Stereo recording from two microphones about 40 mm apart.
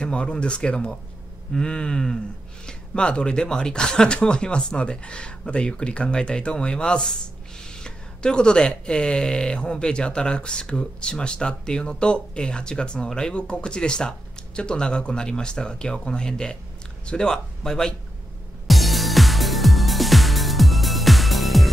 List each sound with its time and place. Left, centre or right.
0.0 s speech: left
18.7 s music: centre